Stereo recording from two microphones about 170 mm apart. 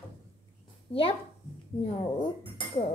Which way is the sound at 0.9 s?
35° left (ahead or behind).